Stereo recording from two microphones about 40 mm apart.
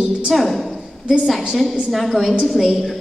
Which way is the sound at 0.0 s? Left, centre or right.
Centre.